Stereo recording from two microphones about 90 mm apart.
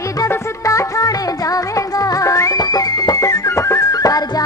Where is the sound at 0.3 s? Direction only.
35° left (ahead or behind).